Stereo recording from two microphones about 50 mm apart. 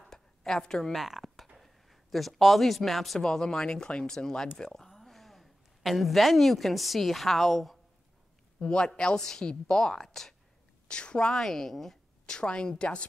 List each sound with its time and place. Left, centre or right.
0.1 s a sound: centre
1.0 s a sound: centre
1.6 s speech: centre
3.2 s a woman's voice: centre
8.6 s speech: centre
10.9 s a woman's voice: centre
11.3 s speech: centre
12.3 s a woman's voice: centre